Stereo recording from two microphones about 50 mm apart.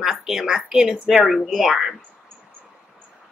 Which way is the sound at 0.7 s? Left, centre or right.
Centre.